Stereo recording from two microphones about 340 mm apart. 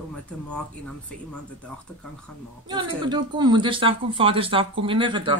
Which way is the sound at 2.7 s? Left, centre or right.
Centre.